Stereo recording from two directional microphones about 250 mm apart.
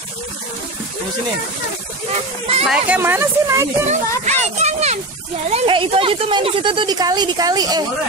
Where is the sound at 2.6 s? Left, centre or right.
Centre.